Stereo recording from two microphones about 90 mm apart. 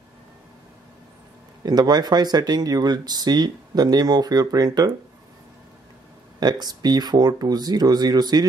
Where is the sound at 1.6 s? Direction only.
50° right (ahead or behind).